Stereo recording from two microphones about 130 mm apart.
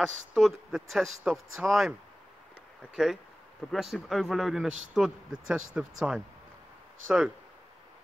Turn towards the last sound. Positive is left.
turn(degrees=-5)  # may be behind; listen again after turning